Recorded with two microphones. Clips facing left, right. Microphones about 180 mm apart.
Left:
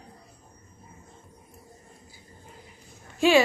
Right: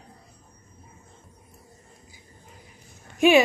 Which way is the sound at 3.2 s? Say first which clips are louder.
Right 2 dB; 20° right (ahead or behind).